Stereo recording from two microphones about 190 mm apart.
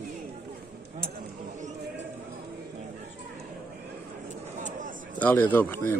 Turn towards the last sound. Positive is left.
turn(degrees=10)  # may be behind; listen again after turning